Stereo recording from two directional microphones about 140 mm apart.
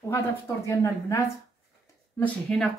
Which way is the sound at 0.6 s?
20° left (ahead or behind).